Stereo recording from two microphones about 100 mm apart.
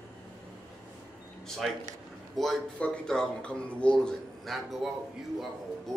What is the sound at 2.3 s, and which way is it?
Speech, 5° left (ahead or behind).